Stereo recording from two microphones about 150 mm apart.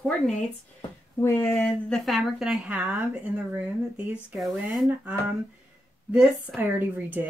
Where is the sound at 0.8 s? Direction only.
20° left (ahead or behind).